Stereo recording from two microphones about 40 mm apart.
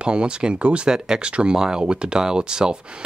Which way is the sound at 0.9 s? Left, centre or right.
Centre.